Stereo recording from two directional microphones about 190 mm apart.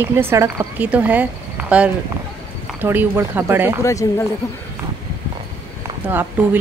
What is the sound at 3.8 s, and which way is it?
Speech, 15° left (ahead or behind).